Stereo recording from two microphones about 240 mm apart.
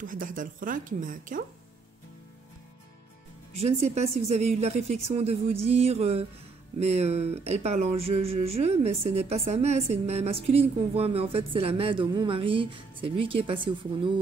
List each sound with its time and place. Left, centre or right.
0.0 s speech: right
3.5 s speech: right